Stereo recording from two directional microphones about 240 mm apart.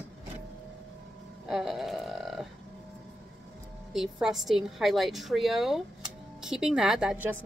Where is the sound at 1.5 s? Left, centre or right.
Centre.